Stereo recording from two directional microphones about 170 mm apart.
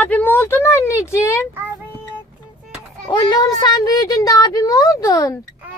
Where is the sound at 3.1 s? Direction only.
25° left (ahead or behind).